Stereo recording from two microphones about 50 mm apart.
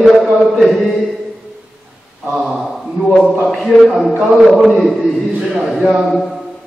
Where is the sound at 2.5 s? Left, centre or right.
Centre.